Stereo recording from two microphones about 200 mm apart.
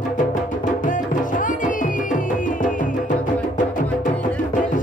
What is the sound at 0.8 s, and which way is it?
Music, 40° left (ahead or behind).